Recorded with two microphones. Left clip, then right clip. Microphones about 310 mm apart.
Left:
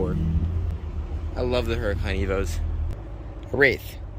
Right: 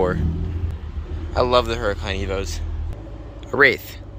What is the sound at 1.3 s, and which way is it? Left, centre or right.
Speech, centre.